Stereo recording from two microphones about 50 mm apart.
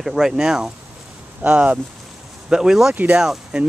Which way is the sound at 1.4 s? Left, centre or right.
Right.